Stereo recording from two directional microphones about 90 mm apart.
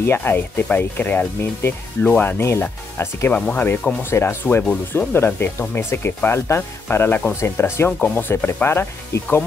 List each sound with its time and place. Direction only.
0.0 s speech: 25° left (ahead or behind)